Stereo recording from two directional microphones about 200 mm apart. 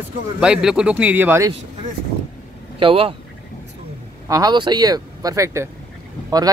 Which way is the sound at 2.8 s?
25° right (ahead or behind).